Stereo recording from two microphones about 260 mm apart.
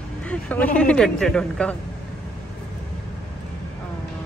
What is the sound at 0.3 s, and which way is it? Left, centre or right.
Speech, centre.